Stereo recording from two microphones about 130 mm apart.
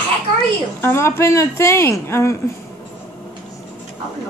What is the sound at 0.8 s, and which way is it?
Speech, 20° left (ahead or behind).